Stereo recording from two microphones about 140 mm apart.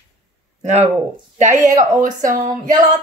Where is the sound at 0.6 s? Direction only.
50° right (ahead or behind).